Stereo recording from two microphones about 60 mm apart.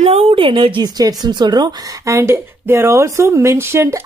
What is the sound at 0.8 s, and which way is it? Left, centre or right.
Speech, right.